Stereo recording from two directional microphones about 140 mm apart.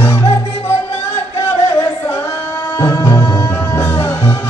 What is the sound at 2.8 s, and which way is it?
Music, 25° left (ahead or behind).